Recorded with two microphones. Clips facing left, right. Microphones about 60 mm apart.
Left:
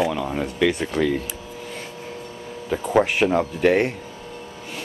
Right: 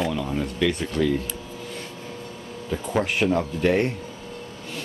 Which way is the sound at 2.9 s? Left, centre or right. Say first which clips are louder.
Left 4 dB; centre.